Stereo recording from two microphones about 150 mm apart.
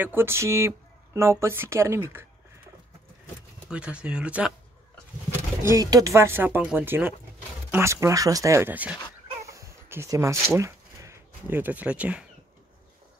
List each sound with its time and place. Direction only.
0.0 s speech: 15° right (ahead or behind)
3.7 s speech: 5° right (ahead or behind)
5.6 s speech: 20° right (ahead or behind)
9.4 s a sound: 20° right (ahead or behind)